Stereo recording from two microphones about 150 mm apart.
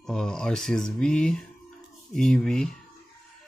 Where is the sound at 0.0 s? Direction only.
5° left (ahead or behind).